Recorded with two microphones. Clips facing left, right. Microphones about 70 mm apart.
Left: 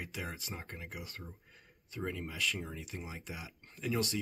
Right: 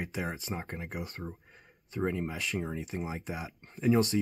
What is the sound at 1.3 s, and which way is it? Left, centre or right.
Speech, right.